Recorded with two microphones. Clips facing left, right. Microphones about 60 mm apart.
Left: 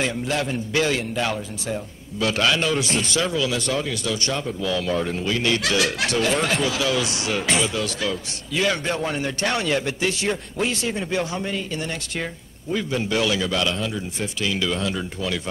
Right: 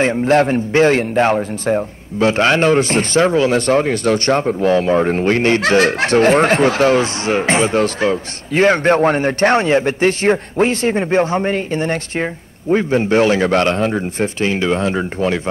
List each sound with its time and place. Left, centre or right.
0.0 s a man's voice: right